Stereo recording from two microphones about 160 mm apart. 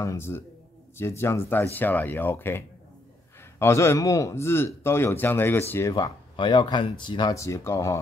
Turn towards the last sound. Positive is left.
turn(degrees=20)  # may be behind; listen again after turning